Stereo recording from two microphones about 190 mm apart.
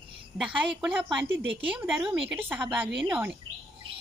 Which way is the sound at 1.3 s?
75° right (ahead or behind).